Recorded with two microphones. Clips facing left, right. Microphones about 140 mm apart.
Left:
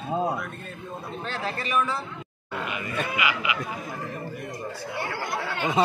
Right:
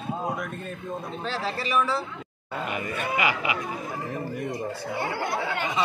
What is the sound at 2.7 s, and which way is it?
Speech, 45° right (ahead or behind).